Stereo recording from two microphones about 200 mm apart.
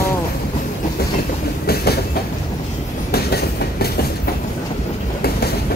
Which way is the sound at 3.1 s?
50° left (ahead or behind).